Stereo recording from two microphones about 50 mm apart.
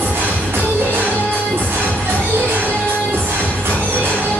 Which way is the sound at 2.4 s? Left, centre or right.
Right.